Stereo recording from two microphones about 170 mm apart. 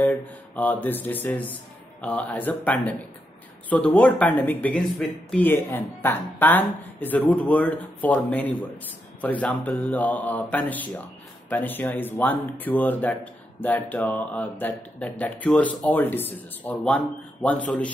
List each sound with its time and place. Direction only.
0.0 s speech: 10° left (ahead or behind)